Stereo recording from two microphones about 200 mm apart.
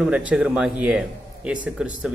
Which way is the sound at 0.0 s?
5° right (ahead or behind).